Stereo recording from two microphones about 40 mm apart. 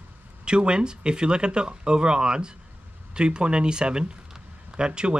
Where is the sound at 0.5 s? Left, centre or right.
Right.